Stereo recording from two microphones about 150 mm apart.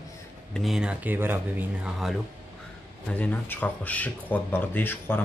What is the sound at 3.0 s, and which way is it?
Speech, 10° left (ahead or behind).